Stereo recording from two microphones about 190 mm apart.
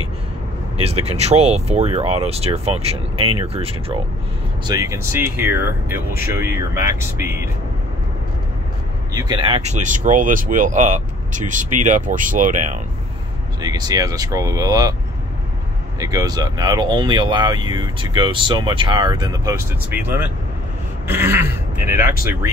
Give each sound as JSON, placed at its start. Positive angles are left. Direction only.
{"t": 0.8, "sound": "speech", "side_deg": -30}
{"t": 4.6, "sound": "speech", "side_deg": -15}
{"t": 9.1, "sound": "speech", "side_deg": -25}
{"t": 13.6, "sound": "speech", "side_deg": -20}
{"t": 16.0, "sound": "speech", "side_deg": -20}